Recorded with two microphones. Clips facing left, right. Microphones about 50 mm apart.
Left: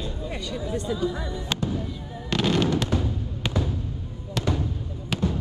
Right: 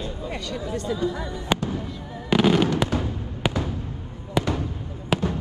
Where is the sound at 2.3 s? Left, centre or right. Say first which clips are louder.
Right 4 dB; centre.